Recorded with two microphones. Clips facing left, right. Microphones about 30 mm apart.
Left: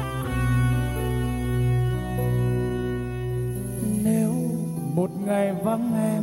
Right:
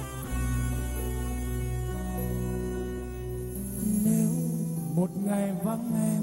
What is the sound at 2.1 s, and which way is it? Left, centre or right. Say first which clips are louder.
Music: left 7 dB; left.